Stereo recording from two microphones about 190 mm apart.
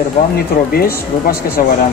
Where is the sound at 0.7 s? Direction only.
55° left (ahead or behind).